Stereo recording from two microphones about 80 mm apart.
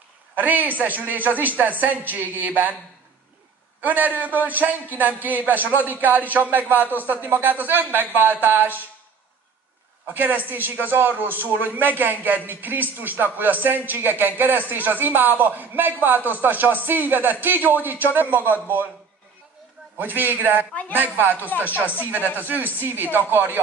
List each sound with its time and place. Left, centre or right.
0.4 s speech: right
3.8 s speech: right
10.0 s speech: right
20.0 s speech: right
22.2 s speech: left
23.1 s speech: right